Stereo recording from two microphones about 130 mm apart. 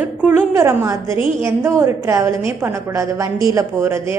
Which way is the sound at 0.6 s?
25° right (ahead or behind).